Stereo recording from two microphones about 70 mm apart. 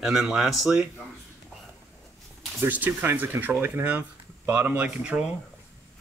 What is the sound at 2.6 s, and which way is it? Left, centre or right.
Speech, right.